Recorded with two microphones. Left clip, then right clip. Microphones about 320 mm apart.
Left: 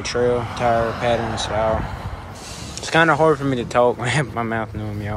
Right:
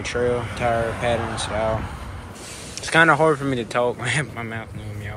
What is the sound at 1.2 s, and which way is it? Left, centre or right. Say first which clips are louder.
Speech: left 3 dB; left.